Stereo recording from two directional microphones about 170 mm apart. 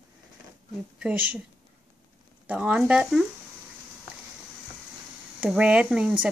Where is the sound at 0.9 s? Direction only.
5° right (ahead or behind).